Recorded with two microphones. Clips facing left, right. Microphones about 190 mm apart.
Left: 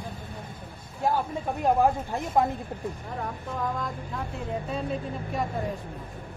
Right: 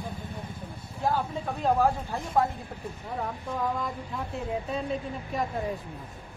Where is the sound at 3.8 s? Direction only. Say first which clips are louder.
Even; centre (ahead or behind).